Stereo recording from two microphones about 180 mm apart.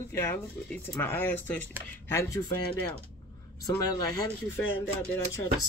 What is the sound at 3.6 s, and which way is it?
Speech, 20° left (ahead or behind).